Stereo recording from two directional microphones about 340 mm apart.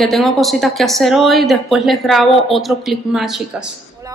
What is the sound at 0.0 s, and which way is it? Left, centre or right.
Speech, centre.